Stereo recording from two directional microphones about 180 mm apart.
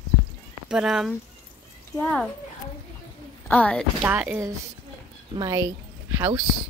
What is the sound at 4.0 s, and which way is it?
Speech, 10° right (ahead or behind).